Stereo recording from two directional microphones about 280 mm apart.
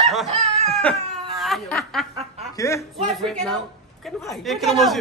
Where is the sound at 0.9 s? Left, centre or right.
Centre.